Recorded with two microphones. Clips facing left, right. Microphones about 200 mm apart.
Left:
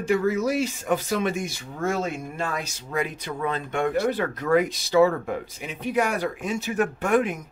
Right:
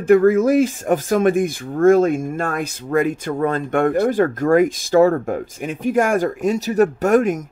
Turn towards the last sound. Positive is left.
turn(degrees=-45)  # may be behind; listen again after turning